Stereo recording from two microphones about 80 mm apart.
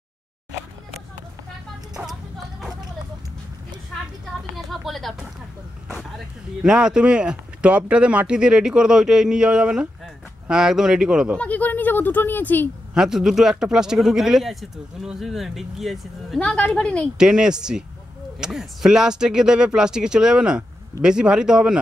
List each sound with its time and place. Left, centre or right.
4.4 s a sound: centre
5.9 s vehicle: centre
6.6 s speech: centre
11.3 s speech: centre
12.9 s speech: centre
16.3 s a woman's voice: centre
17.2 s speech: centre